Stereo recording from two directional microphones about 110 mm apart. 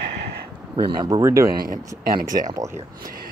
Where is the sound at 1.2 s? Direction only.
25° right (ahead or behind).